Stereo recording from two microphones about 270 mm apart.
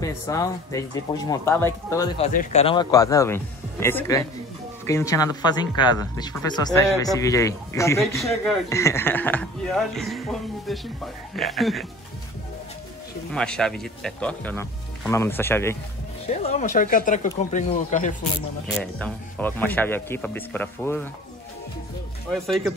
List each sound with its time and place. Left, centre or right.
0.0 s speech: centre
2.1 s speech: left; by 10.2 s centre
11.3 s speech: centre
13.3 s speech: centre
16.3 s speech: left
18.8 s speech: centre
22.3 s speech: centre